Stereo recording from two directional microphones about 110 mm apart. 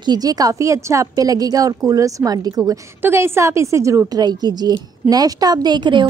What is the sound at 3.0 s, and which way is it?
A woman's voice, 25° right (ahead or behind).